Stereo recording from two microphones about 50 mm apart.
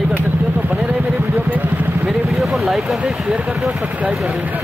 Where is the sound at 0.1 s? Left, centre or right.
Right.